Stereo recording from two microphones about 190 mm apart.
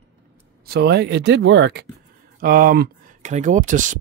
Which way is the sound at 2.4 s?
50° right (ahead or behind).